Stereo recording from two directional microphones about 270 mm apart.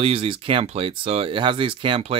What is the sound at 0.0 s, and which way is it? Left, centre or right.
Speech, right.